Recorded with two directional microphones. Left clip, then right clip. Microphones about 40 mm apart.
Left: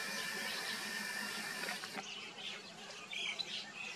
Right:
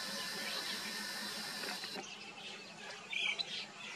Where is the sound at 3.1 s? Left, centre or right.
Right.